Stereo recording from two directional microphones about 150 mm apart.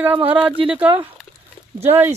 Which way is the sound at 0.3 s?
10° right (ahead or behind).